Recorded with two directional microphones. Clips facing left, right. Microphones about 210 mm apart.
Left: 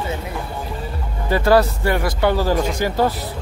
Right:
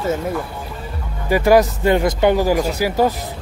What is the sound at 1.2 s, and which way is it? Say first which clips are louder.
Speech: right 2 dB; 15° right (ahead or behind).